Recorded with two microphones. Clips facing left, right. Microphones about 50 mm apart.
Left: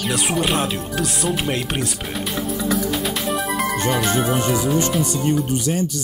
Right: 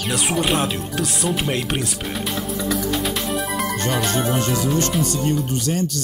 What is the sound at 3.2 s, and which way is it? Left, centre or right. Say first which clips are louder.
Speech: left 2 dB; centre.